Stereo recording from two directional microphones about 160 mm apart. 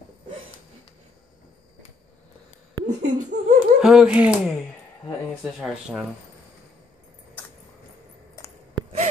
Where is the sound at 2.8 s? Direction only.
50° right (ahead or behind).